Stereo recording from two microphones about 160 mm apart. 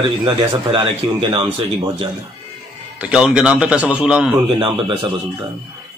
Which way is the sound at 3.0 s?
5° right (ahead or behind).